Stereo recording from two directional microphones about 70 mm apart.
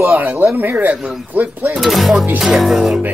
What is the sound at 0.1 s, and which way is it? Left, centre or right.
Speech, right.